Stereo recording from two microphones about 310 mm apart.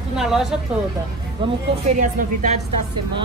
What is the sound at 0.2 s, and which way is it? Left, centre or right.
Speech, centre.